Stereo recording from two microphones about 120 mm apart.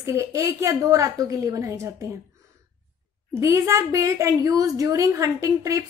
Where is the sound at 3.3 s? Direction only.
25° right (ahead or behind).